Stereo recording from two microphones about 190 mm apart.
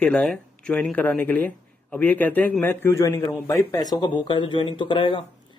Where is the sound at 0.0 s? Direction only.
5° left (ahead or behind).